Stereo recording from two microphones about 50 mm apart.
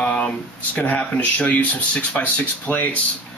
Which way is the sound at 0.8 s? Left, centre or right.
Left.